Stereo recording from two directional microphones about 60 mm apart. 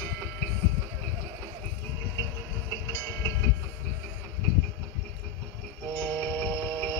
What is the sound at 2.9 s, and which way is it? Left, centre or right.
Train, left.